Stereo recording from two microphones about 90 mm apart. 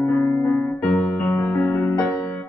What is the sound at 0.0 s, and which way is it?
Music, 25° left (ahead or behind).